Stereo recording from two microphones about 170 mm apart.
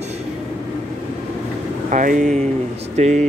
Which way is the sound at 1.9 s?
50° right (ahead or behind).